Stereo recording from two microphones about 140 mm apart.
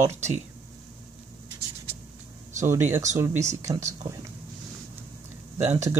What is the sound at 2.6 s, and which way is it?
Speech, 15° right (ahead or behind).